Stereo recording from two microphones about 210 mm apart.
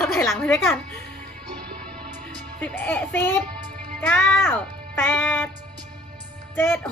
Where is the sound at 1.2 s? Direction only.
40° right (ahead or behind).